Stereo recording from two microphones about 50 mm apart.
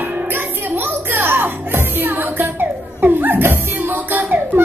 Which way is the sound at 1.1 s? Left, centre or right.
Right.